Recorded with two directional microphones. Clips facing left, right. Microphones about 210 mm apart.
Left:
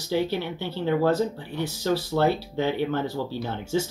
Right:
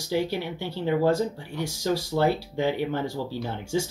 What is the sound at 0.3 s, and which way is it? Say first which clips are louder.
Speech: left 1 dB; 15° right (ahead or behind).